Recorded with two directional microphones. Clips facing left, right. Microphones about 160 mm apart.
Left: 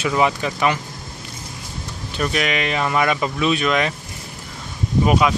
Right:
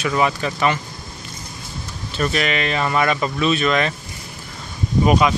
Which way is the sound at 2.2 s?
10° left (ahead or behind).